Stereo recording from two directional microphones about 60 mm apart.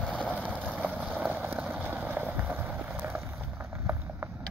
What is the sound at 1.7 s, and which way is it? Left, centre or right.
Vehicle, right.